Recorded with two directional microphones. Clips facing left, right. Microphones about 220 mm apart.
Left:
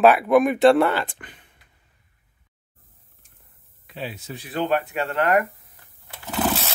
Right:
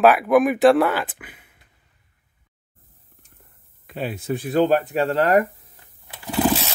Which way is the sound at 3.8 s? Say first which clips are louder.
Right 6 dB; 50° right (ahead or behind).